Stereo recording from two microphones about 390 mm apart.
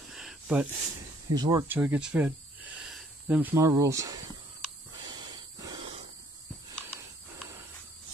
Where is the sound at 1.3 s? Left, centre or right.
Centre.